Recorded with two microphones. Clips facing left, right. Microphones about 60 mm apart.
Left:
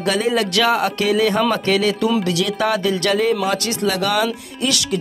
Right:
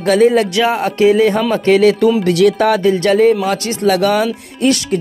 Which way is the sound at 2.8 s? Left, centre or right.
Right.